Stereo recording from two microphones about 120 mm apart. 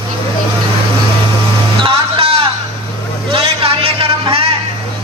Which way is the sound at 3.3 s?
50° right (ahead or behind).